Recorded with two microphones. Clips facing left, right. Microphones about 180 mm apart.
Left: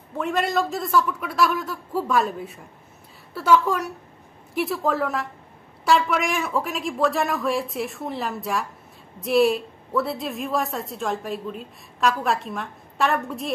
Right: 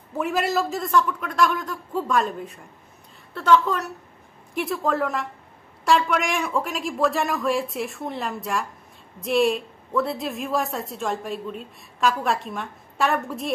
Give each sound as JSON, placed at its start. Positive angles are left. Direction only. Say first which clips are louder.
{"t": 0.2, "sound": "a woman's voice", "louder": "even", "side_deg": -5}